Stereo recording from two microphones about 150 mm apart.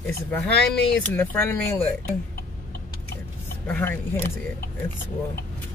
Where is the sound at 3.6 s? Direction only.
15° left (ahead or behind).